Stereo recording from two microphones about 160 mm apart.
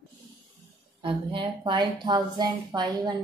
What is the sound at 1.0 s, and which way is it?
Speech, 30° right (ahead or behind).